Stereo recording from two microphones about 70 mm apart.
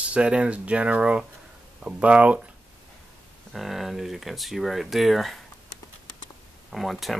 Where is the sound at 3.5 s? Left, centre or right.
Centre.